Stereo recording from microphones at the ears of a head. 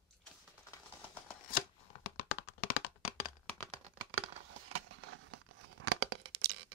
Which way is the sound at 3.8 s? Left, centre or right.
Right.